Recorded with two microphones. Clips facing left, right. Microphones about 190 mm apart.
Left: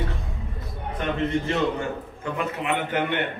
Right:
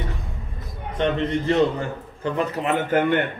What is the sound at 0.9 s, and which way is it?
A man's voice, 30° right (ahead or behind).